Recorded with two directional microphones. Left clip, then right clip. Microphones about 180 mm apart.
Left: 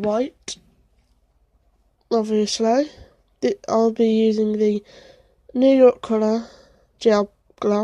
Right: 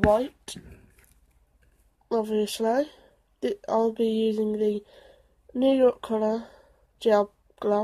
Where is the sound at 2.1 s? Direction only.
35° left (ahead or behind).